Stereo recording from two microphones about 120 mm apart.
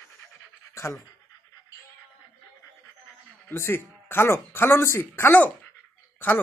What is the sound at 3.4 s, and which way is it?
Speech, 20° left (ahead or behind).